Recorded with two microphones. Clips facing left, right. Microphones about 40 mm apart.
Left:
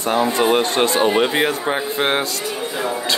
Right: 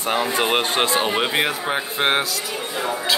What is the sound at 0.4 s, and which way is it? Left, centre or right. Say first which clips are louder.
Speech: left 5 dB; right.